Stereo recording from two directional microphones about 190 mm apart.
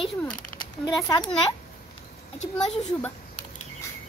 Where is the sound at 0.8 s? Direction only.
20° left (ahead or behind).